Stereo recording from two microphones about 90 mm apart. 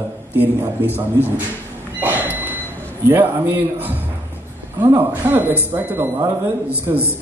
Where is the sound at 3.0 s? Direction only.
25° right (ahead or behind).